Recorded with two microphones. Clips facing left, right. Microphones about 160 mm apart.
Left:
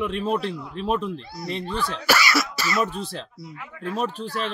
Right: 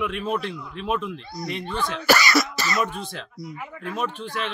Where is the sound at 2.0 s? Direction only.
5° left (ahead or behind).